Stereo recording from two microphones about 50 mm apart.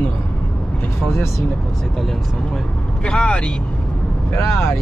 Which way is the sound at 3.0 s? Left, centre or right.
Centre.